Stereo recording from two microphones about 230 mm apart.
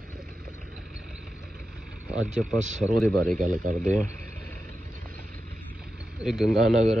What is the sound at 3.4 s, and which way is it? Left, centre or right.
Speech, right.